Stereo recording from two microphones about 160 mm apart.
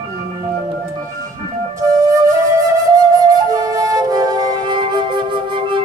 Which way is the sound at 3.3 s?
20° right (ahead or behind).